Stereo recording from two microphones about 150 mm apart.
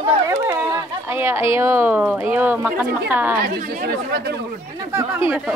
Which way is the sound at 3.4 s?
90° right.